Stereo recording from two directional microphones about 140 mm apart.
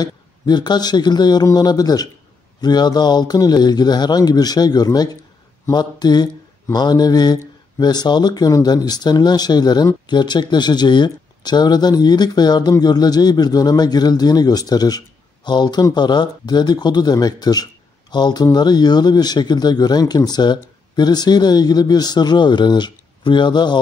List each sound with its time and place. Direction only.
0.0 s speech: 30° left (ahead or behind)